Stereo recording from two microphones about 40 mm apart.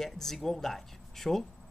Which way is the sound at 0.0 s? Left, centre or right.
Centre.